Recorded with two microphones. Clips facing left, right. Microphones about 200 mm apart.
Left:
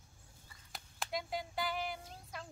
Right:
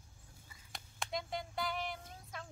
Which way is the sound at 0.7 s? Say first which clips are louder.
Even; centre (ahead or behind).